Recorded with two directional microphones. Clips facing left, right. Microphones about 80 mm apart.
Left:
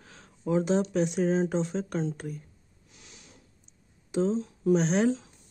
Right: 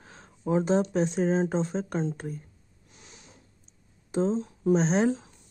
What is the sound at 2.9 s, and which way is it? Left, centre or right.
Snort, right.